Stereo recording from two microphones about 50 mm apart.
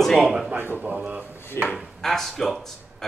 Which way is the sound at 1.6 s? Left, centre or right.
Left.